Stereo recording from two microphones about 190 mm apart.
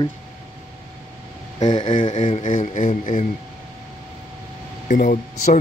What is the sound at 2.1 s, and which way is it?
Speech, 40° left (ahead or behind).